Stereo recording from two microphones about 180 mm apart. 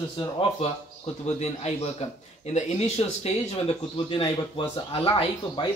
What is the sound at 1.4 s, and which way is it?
Speech, 40° left (ahead or behind).